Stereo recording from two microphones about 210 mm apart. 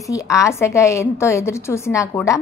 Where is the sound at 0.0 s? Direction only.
15° left (ahead or behind).